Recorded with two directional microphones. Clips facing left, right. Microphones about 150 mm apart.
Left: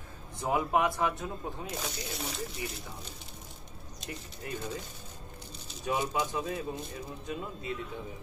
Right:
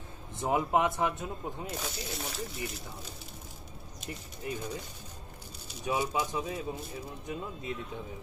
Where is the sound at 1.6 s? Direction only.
Centre (ahead or behind).